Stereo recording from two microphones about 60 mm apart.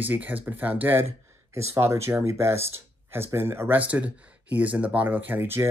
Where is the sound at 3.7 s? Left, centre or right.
Right.